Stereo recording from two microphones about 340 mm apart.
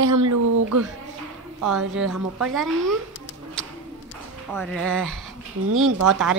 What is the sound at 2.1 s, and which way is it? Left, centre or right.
Speech, right.